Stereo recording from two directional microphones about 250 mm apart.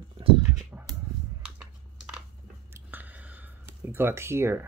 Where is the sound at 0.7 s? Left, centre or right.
Centre.